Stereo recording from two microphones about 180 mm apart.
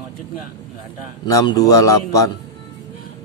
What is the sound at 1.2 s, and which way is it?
A man's voice, 20° left (ahead or behind).